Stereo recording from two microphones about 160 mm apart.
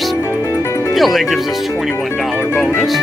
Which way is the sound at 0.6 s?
20° left (ahead or behind).